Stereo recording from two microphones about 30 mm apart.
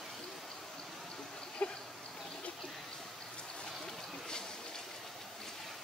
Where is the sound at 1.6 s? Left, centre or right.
Left.